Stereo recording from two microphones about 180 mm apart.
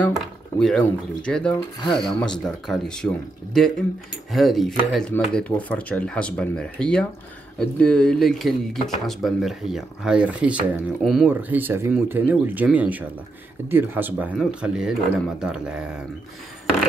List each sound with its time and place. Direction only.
0.0 s speech: 5° left (ahead or behind)
1.5 s speech: 25° left (ahead or behind)
2.2 s speech: 5° left (ahead or behind)